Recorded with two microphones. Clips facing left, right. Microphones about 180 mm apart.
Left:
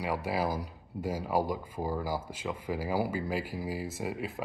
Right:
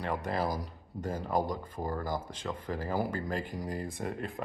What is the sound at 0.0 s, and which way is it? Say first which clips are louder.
Speech: left 1 dB; 10° left (ahead or behind).